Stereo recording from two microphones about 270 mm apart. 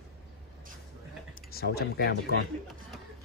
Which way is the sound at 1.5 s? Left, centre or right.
Left.